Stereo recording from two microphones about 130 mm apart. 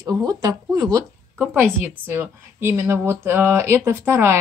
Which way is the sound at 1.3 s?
15° right (ahead or behind).